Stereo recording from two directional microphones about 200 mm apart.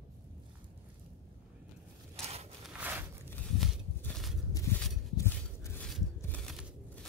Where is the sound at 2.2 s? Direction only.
30° right (ahead or behind).